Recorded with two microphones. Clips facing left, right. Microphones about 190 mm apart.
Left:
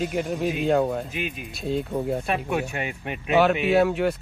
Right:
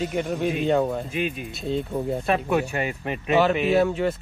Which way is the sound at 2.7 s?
40° right (ahead or behind).